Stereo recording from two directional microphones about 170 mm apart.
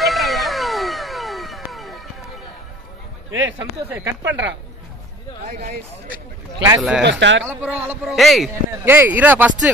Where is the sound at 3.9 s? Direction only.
10° right (ahead or behind).